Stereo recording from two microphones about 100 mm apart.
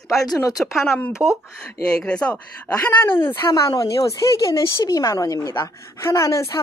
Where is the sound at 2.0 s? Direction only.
10° left (ahead or behind).